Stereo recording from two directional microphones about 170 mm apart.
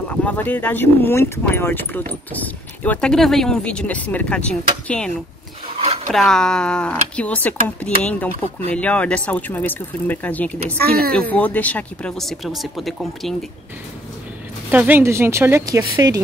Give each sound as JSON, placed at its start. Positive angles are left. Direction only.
{"t": 0.1, "sound": "speech", "side_deg": 10}
{"t": 5.8, "sound": "rub", "side_deg": -35}
{"t": 6.1, "sound": "speech", "side_deg": 5}
{"t": 10.8, "sound": "speech", "side_deg": -65}
{"t": 11.1, "sound": "speech", "side_deg": 10}
{"t": 14.7, "sound": "speech", "side_deg": -10}